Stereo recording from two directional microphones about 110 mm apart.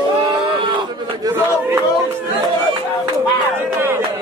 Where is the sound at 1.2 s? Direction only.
35° right (ahead or behind).